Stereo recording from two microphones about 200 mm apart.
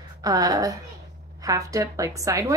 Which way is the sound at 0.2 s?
20° right (ahead or behind).